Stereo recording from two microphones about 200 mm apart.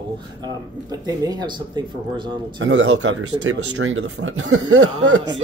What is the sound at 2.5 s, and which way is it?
Speech, 70° right (ahead or behind).